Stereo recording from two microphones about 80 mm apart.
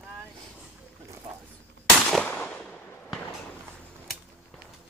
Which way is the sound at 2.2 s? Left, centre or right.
Centre.